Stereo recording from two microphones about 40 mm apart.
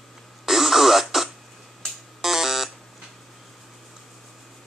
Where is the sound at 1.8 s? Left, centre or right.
Centre.